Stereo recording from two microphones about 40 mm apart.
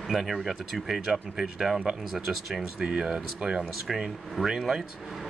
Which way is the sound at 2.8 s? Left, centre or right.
Right.